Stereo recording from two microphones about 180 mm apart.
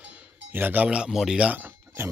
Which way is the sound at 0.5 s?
10° right (ahead or behind).